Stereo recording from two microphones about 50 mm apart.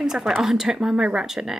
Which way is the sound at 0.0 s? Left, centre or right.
Centre.